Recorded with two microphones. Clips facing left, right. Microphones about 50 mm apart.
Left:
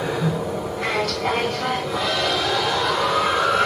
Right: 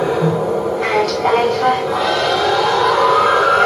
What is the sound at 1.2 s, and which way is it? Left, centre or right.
Music, centre.